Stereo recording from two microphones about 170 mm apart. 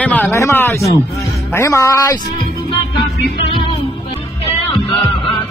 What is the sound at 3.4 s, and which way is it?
Music, 35° left (ahead or behind).